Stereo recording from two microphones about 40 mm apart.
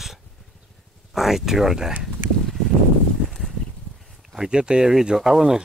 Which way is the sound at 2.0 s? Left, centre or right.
Centre.